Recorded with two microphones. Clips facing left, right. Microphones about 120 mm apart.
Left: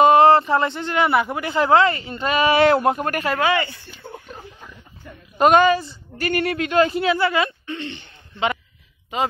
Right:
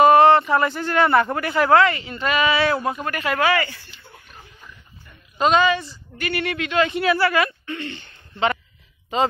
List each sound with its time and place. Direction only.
0.0 s speech: 25° left (ahead or behind)
1.5 s speech: 25° left (ahead or behind)
2.5 s speech: 65° left (ahead or behind)
3.3 s speech: 20° left (ahead or behind)
5.4 s a woman's voice: 55° left (ahead or behind)
6.1 s speech: 40° left (ahead or behind)
7.0 s speech: 20° left (ahead or behind)